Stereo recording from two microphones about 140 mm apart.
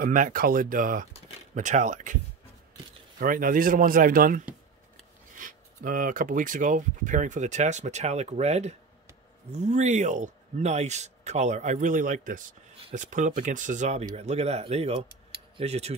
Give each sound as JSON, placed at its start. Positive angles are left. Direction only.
{"t": 0.0, "sound": "speech", "side_deg": -80}
{"t": 1.5, "sound": "speech", "side_deg": -60}
{"t": 3.2, "sound": "speech", "side_deg": -90}
{"t": 5.3, "sound": "speech", "side_deg": -70}